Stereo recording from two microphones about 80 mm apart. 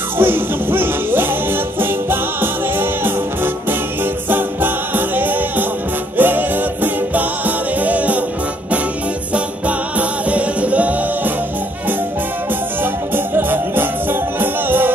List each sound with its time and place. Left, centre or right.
0.2 s music: right
9.3 s music: centre
12.8 s music: right